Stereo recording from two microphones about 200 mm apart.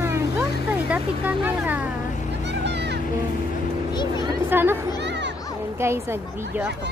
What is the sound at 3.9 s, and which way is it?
Vehicle, 20° left (ahead or behind).